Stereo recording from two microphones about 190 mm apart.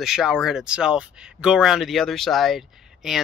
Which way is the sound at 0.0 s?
5° right (ahead or behind).